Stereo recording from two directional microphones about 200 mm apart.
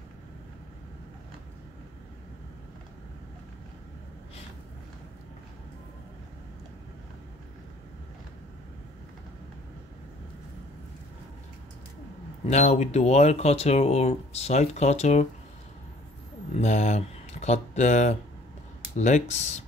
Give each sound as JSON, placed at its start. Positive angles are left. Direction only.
{"t": 12.4, "sound": "speech", "side_deg": 35}
{"t": 16.5, "sound": "a sound", "side_deg": 35}
{"t": 18.9, "sound": "speech", "side_deg": 35}